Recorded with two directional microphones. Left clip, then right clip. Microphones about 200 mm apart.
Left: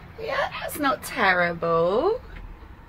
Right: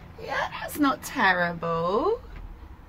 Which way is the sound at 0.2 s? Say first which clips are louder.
Left 3 dB; 5° left (ahead or behind).